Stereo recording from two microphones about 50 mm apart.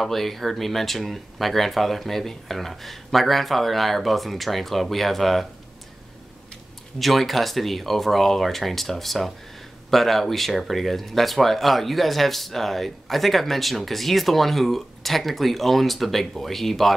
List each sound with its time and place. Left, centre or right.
0.0 s speech: centre
7.0 s speech: centre